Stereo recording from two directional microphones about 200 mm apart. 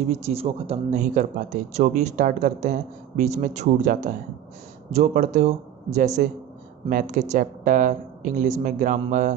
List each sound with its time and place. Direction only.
0.1 s speech: 30° right (ahead or behind)